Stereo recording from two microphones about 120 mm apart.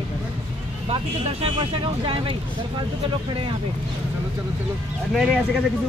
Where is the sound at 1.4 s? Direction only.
50° right (ahead or behind).